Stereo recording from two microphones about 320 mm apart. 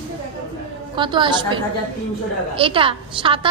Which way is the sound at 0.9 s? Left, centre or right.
Centre.